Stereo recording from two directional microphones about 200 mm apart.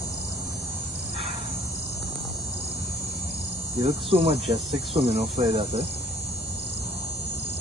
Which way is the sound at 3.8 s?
30° right (ahead or behind).